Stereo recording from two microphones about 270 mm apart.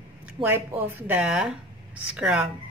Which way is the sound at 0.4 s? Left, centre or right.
Centre.